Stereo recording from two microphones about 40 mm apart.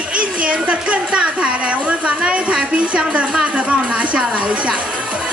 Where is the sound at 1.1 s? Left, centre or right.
Right.